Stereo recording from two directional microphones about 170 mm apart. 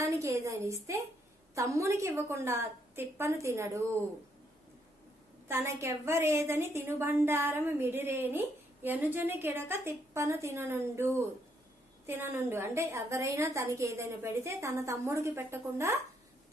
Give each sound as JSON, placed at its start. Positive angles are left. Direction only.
{"t": 0.0, "sound": "a woman's voice", "side_deg": -20}
{"t": 5.5, "sound": "a woman's voice", "side_deg": -15}